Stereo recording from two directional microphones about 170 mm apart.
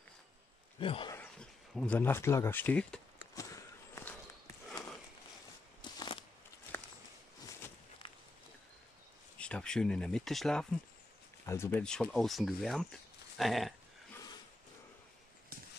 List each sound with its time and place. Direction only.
0.7 s speech: 30° left (ahead or behind)
1.1 s a sound: 10° left (ahead or behind)
3.3 s a sound: 20° left (ahead or behind)
5.8 s crunch: 25° left (ahead or behind)
9.4 s speech: 5° left (ahead or behind)
11.4 s speech: 15° left (ahead or behind)